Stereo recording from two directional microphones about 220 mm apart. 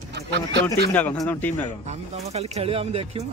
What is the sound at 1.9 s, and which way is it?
Speech, 30° right (ahead or behind).